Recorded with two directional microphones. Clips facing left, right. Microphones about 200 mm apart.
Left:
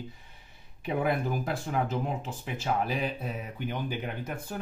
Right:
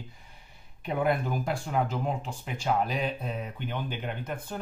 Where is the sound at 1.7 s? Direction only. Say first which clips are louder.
Right 1 dB; 5° left (ahead or behind).